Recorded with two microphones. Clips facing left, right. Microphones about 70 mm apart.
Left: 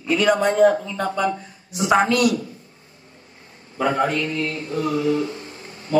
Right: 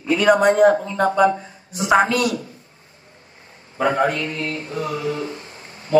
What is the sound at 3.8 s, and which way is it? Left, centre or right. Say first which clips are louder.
Mantra: right 1 dB; right.